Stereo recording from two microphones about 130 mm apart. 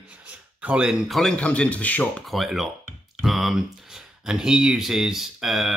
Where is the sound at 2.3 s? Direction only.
Centre (ahead or behind).